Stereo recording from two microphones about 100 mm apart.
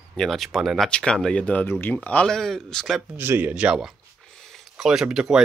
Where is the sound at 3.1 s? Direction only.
20° right (ahead or behind).